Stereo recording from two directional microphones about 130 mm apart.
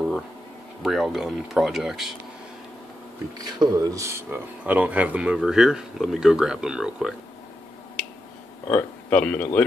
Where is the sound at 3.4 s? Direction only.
30° right (ahead or behind); by 7.1 s 5° right (ahead or behind).